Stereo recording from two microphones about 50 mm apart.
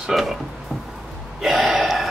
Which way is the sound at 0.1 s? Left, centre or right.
Centre.